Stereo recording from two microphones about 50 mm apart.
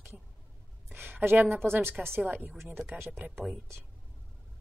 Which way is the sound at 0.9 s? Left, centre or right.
Right.